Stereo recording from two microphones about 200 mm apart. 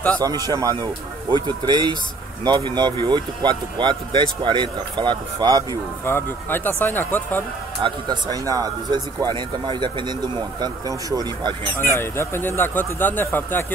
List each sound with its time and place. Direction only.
0.2 s speech: 20° right (ahead or behind)
6.0 s speech: 10° left (ahead or behind)
7.8 s speech: 20° right (ahead or behind)
11.7 s speech: 10° left (ahead or behind)